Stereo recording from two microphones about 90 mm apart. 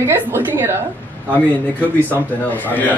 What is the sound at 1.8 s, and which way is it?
Speech, 25° right (ahead or behind).